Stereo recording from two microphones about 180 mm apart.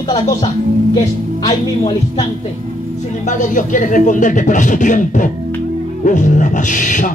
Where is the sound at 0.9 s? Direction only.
20° left (ahead or behind).